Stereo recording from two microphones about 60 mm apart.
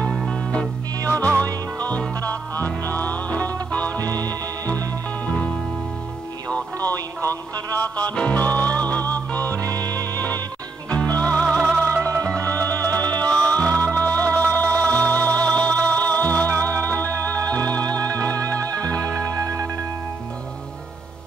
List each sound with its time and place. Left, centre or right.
0.3 s music: centre
4.0 s music: right
5.2 s music: left
6.5 s music: left
7.2 s a sound: right
7.8 s music: left
10.9 s music: left
11.8 s music: right
12.2 s music: left
19.3 s music: right